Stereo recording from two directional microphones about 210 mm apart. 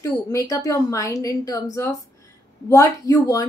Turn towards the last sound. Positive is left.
turn(degrees=15)  # may be behind; listen again after turning